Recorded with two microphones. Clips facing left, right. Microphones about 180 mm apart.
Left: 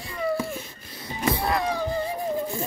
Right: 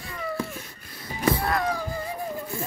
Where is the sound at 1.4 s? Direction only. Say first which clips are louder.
Left 1 dB; 25° left (ahead or behind).